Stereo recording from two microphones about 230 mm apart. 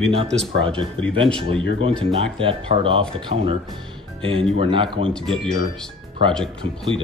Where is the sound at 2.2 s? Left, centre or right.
Right.